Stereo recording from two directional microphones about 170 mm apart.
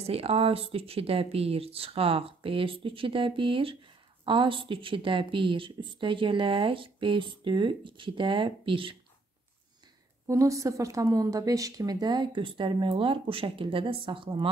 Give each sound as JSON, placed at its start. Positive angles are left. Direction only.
{"t": 0.0, "sound": "speech", "side_deg": -35}
{"t": 10.2, "sound": "speech", "side_deg": -20}